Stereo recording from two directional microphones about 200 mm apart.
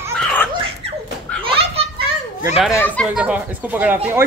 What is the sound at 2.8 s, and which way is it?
Speech, 10° left (ahead or behind).